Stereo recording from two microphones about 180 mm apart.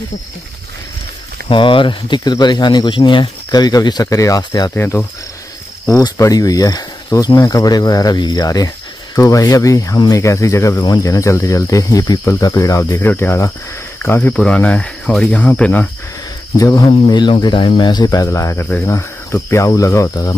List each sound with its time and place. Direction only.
1.5 s speech: 30° left (ahead or behind); by 15.9 s 5° left (ahead or behind)
16.5 s speech: 20° left (ahead or behind)